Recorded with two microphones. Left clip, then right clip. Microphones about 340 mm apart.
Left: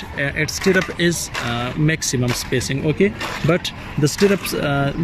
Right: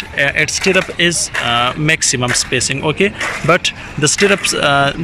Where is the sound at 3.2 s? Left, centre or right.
Right.